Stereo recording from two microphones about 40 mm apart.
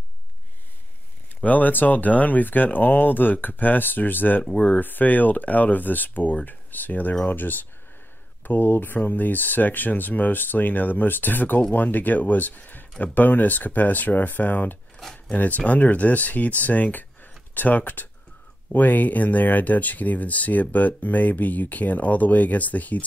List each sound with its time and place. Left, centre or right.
1.4 s speech: left
4.5 s speech: left
4.7 s speech: left
15.0 s cutlery: centre
15.3 s speech: left